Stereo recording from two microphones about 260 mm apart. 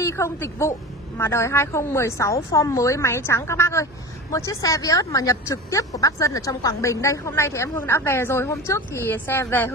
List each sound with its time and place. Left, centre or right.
0.0 s speech: centre